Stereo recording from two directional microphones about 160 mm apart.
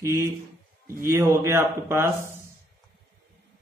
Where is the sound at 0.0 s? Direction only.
15° right (ahead or behind).